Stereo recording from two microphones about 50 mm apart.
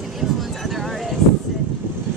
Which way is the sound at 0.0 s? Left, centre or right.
Centre.